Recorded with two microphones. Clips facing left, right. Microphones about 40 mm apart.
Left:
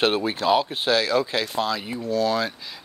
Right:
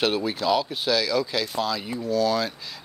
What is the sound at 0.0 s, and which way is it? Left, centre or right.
Speech, left.